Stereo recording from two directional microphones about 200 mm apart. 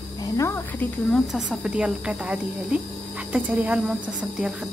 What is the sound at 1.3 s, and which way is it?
A woman's voice, 5° right (ahead or behind).